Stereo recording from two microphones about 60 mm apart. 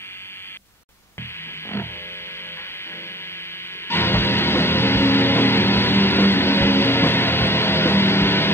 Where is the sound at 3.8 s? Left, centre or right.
Left.